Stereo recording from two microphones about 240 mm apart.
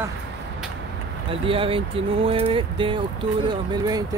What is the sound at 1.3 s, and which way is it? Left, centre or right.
Speech, right.